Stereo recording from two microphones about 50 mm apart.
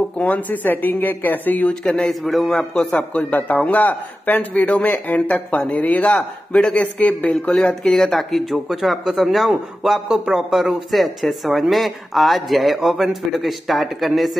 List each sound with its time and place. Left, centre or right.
0.2 s speech: left
1.7 s a man's voice: centre
2.3 s a man's voice: centre
3.0 s a man's voice: left
7.8 s a man's voice: centre
10.0 s a man's voice: centre